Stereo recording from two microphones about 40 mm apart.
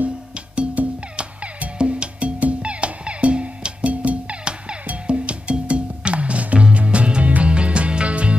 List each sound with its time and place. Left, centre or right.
0.8 s music: right
1.1 s music: right